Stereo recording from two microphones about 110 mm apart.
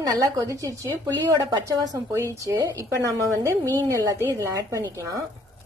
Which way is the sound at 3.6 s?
20° left (ahead or behind).